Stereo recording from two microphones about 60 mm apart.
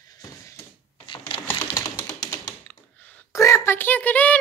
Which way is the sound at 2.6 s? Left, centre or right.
Left.